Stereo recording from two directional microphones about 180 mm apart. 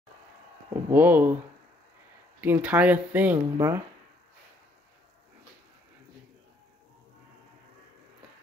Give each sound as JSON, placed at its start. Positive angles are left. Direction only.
{"t": 0.8, "sound": "speech", "side_deg": -10}
{"t": 2.4, "sound": "speech", "side_deg": -10}
{"t": 3.5, "sound": "speech", "side_deg": -20}